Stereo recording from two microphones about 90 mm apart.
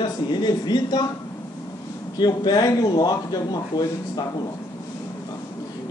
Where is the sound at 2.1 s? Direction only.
50° left (ahead or behind).